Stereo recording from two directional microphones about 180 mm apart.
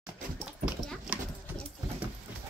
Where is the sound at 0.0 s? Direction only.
Centre (ahead or behind).